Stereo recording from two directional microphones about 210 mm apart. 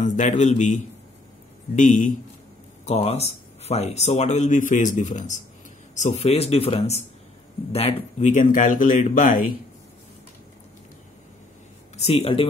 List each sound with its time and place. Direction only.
0.0 s speech: 35° left (ahead or behind)
12.0 s speech: 30° left (ahead or behind)